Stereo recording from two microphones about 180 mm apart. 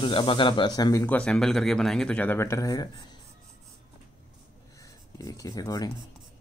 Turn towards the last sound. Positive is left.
turn(degrees=20)  # may be behind; listen again after turning